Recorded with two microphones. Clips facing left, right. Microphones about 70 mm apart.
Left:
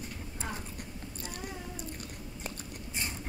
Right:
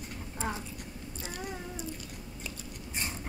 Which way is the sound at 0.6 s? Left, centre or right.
Left.